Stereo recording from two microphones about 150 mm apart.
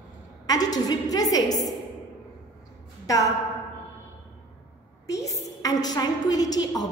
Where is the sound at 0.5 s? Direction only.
25° left (ahead or behind).